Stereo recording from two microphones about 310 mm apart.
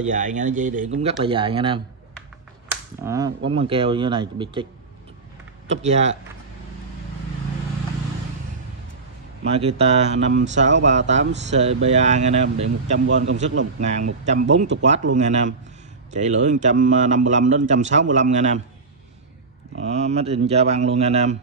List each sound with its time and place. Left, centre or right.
0.0 s speech: right
3.0 s speech: centre
5.7 s speech: right
9.4 s speech: centre
19.8 s speech: right